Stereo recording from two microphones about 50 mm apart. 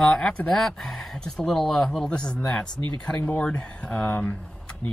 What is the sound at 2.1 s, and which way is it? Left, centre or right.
Speech, left.